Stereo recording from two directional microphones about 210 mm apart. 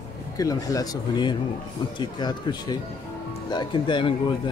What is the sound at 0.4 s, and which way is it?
Speech, 15° left (ahead or behind).